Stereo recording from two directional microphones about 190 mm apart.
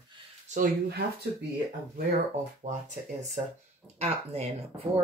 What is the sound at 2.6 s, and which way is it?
Speech, 40° right (ahead or behind).